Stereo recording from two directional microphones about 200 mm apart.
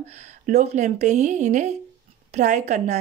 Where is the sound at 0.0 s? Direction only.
35° right (ahead or behind).